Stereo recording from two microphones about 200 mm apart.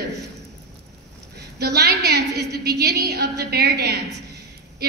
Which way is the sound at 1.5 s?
55° right (ahead or behind).